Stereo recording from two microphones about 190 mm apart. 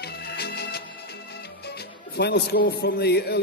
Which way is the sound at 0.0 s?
60° left (ahead or behind).